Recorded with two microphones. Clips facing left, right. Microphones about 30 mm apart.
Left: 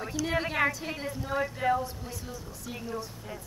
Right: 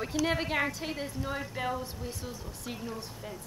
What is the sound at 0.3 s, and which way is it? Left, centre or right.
Speech, centre.